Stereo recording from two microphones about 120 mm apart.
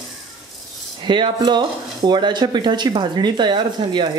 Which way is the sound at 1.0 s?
40° right (ahead or behind).